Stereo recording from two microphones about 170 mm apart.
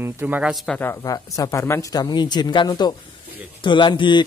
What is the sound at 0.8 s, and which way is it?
Speech, 15° left (ahead or behind).